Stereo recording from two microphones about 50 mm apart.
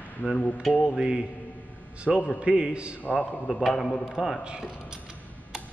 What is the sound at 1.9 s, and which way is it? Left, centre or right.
A man's voice, centre.